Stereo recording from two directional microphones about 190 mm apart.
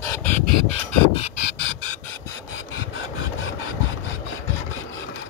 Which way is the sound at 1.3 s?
70° left (ahead or behind).